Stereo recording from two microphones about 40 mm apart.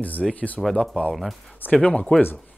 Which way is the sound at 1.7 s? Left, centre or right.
Left.